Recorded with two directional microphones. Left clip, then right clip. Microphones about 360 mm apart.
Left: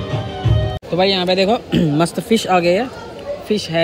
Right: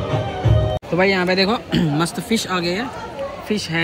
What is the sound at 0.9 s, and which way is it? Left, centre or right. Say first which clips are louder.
Speech: left 2 dB; right.